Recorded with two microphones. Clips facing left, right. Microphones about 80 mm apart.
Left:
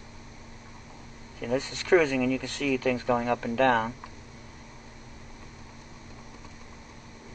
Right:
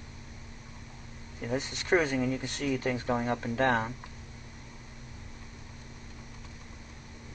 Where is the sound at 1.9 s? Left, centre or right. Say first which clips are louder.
Left 4 dB; right.